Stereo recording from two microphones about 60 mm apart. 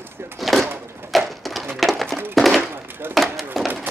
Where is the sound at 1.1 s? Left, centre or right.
Centre.